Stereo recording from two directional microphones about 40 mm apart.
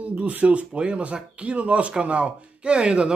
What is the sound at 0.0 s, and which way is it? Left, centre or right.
Speech, right.